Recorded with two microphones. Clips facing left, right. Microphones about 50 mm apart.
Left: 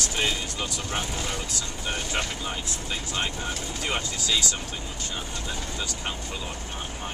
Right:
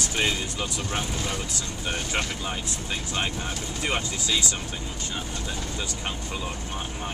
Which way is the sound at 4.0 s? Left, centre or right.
Centre.